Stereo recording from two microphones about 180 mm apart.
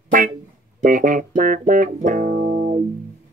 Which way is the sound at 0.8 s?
50° right (ahead or behind).